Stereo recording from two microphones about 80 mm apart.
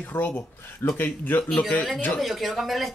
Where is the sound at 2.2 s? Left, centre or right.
Centre.